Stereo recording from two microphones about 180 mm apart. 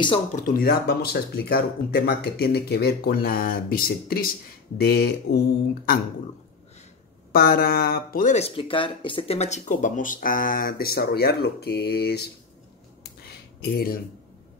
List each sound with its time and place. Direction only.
0.3 s speech: 50° left (ahead or behind)
7.3 s speech: 55° left (ahead or behind)
13.0 s a sound: 65° left (ahead or behind)